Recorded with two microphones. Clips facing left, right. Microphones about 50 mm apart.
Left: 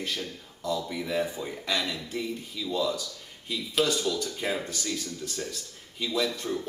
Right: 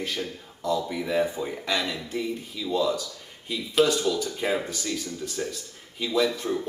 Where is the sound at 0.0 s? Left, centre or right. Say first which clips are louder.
Right 3 dB; centre.